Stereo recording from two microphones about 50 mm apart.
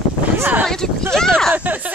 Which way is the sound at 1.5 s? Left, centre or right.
Right.